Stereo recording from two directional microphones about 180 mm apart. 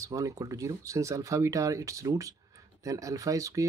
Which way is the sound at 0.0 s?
20° right (ahead or behind).